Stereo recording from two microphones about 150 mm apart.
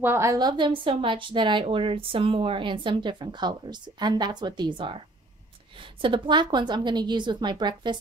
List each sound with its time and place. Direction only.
0.0 s a woman's voice: 15° right (ahead or behind)